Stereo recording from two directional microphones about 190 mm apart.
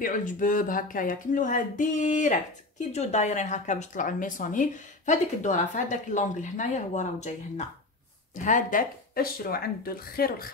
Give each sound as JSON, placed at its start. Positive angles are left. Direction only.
{"t": 0.0, "sound": "speech", "side_deg": 45}